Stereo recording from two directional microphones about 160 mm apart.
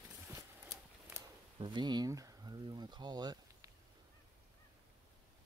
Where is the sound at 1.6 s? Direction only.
30° right (ahead or behind).